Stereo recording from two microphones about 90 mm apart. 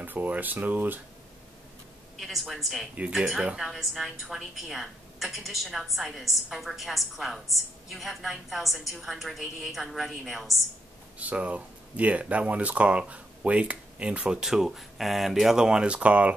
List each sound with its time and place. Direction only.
0.0 s speech: 20° right (ahead or behind)
2.1 s a woman's voice: centre (ahead or behind)
11.1 s speech: 15° right (ahead or behind)